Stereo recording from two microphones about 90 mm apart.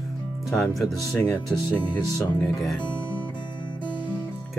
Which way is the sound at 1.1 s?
10° left (ahead or behind).